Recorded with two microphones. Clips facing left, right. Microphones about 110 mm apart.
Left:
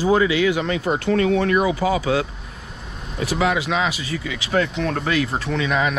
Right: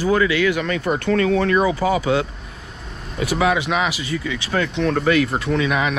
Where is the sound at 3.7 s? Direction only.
30° left (ahead or behind).